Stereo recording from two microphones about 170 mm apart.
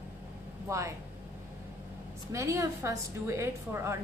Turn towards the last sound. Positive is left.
turn(degrees=-15)  # may be behind; listen again after turning